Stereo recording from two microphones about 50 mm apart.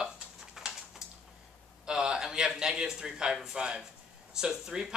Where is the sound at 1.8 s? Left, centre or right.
Centre.